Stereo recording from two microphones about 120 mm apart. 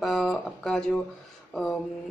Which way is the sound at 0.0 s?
Centre (ahead or behind).